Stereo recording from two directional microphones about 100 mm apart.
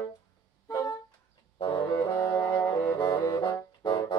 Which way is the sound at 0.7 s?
40° left (ahead or behind).